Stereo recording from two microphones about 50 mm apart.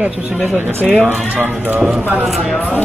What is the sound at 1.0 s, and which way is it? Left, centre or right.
Speech, right.